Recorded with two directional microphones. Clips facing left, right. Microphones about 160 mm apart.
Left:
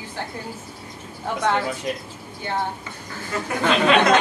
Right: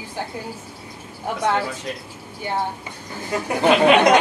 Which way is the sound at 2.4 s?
15° right (ahead or behind).